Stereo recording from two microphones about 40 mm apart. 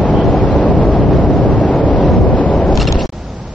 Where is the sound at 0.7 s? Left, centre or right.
Centre.